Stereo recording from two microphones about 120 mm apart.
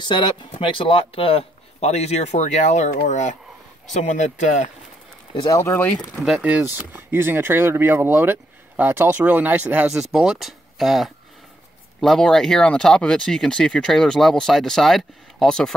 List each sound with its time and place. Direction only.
0.0 s speech: 40° left (ahead or behind); by 4.6 s 90° left
5.3 s speech: 35° left (ahead or behind)
5.6 s speech: 20° left (ahead or behind)
5.9 s speech: centre (ahead or behind)